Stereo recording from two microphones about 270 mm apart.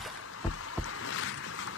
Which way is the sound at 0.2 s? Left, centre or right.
Left.